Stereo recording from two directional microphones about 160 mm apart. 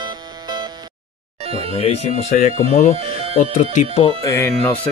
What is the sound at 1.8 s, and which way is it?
Speech, 40° left (ahead or behind).